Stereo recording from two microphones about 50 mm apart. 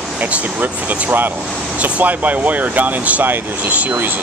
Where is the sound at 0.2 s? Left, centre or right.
Right.